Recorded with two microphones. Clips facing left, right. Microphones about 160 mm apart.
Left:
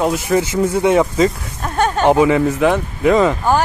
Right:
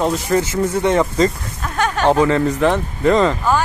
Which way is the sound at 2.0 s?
15° left (ahead or behind).